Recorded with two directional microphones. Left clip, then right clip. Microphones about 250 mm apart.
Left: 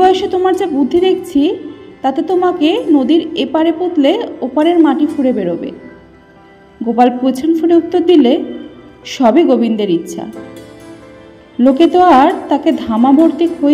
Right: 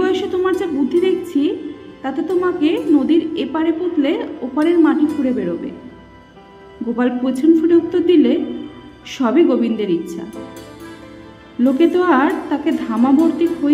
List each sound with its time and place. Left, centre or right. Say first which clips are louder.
0.0 s a woman's voice: left 7 dB; centre
7.0 s a woman's voice: left 7 dB; centre
11.6 s a woman's voice: left 6 dB; centre